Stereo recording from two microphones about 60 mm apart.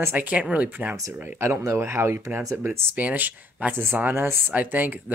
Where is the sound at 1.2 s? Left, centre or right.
Right.